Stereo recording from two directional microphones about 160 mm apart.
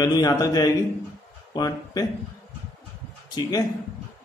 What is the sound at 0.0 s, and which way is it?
A man's voice, 25° left (ahead or behind).